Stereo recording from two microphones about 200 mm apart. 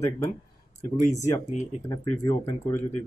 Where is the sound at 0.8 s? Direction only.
15° left (ahead or behind).